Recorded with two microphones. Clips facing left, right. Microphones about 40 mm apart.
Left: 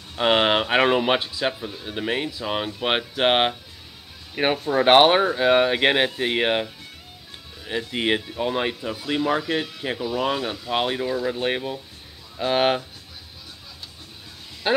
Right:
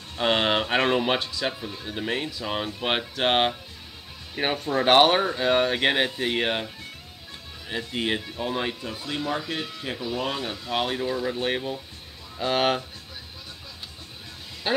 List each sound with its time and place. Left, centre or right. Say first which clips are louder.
0.1 s speech: left 4 dB; centre
8.0 s speech: left 5 dB; left
11.1 s speech: left 2 dB; centre